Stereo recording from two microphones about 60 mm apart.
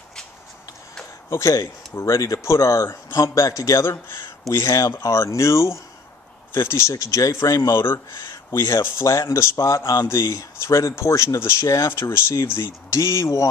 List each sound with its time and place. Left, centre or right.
1.3 s speech: left
6.5 s speech: left
6.9 s speech: left
7.7 s speech: left
8.5 s speech: left
9.0 s speech: left
12.9 s speech: left